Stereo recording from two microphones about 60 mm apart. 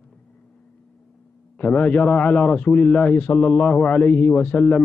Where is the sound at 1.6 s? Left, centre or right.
Left.